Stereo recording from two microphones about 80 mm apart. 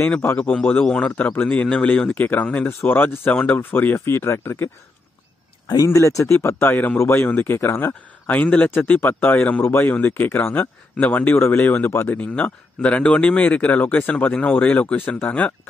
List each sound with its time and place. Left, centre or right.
0.4 s speech: centre; by 4.6 s left
5.9 s speech: left